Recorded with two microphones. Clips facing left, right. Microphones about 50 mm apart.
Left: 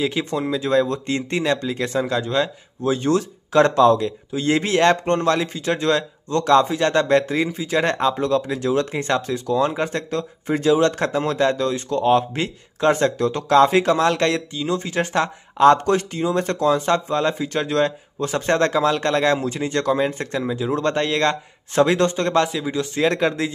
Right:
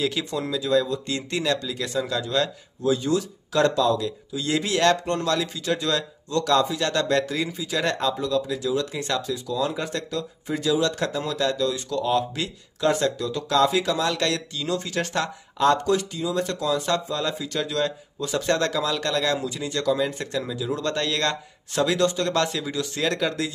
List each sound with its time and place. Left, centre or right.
0.0 s speech: left
1.1 s speech: left
22.4 s speech: centre